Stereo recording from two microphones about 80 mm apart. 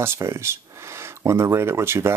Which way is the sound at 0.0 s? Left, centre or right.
Right.